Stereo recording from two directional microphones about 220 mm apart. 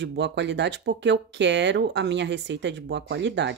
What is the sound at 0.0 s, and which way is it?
Speech, 55° right (ahead or behind).